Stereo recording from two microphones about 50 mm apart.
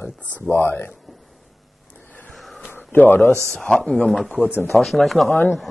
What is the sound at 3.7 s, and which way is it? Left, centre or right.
Speech, centre.